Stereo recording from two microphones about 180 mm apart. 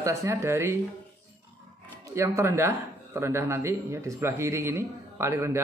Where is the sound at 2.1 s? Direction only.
15° right (ahead or behind).